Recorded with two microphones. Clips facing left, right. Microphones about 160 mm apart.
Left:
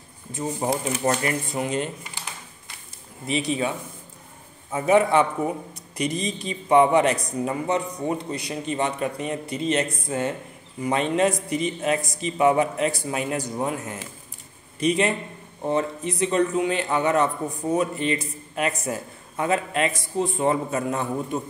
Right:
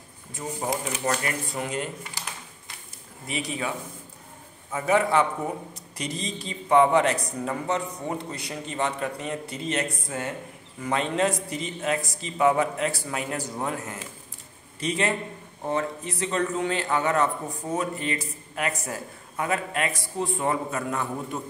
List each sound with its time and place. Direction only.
0.3 s a man's voice: 25° left (ahead or behind)
3.3 s a man's voice: 25° left (ahead or behind)